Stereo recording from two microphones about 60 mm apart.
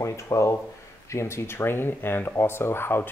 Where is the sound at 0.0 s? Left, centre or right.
Left.